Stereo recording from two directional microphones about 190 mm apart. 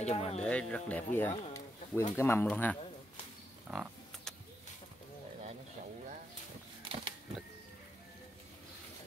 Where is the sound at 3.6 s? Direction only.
Centre (ahead or behind).